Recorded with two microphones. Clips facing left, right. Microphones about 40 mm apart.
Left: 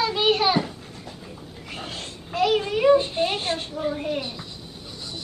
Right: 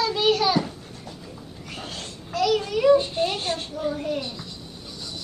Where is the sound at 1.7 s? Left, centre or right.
Left.